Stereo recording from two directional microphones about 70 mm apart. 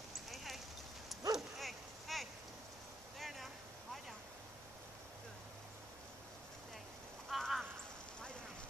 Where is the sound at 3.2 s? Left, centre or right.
Centre.